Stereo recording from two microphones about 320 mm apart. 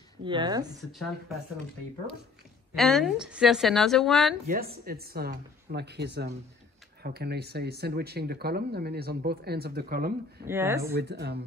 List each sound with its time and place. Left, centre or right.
0.2 s speech: centre
2.7 s speech: centre
4.5 s speech: right
10.4 s speech: centre
10.8 s speech: right